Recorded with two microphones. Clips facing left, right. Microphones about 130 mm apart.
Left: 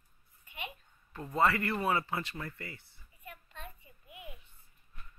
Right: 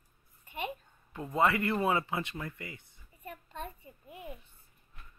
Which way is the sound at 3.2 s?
40° right (ahead or behind).